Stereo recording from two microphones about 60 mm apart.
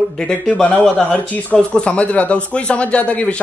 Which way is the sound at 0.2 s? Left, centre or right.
Centre.